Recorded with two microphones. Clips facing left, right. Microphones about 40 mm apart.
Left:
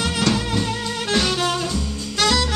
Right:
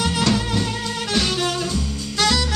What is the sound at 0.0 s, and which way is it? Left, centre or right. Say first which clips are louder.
Music: right 1 dB; centre.